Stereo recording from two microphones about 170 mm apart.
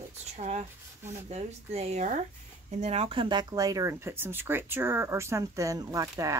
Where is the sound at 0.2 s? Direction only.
40° right (ahead or behind).